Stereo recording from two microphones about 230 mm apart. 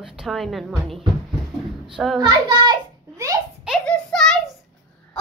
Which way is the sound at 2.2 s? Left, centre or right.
Centre.